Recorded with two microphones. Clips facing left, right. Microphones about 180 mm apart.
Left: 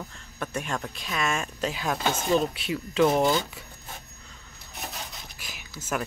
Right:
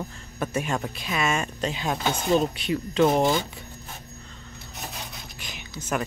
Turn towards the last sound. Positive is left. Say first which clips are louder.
# right 2 dB
turn(degrees=5)  # may be behind; listen again after turning